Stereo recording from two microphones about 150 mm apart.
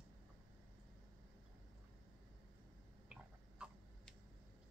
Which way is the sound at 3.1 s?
5° right (ahead or behind).